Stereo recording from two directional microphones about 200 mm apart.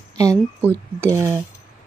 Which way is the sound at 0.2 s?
15° right (ahead or behind).